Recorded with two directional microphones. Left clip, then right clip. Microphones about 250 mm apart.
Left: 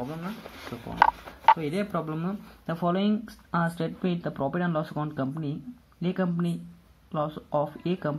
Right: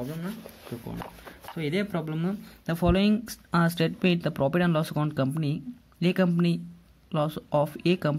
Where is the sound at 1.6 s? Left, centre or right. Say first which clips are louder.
Even; right.